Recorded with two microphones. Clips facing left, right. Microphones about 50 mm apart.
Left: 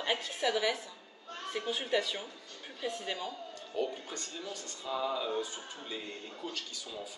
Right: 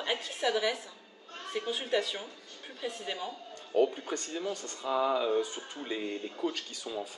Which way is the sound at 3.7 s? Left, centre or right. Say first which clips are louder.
Right 8 dB; right.